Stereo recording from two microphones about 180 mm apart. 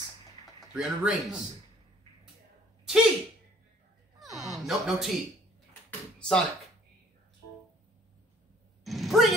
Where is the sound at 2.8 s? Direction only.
Centre (ahead or behind).